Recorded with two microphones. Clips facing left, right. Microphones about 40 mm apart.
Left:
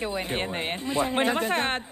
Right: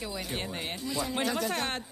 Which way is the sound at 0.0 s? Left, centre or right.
Left.